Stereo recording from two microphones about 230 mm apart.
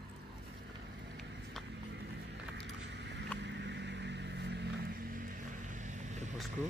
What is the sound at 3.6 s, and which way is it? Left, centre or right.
Vehicle, right.